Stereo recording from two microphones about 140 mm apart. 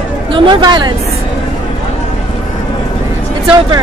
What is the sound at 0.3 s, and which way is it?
Speech, 35° right (ahead or behind).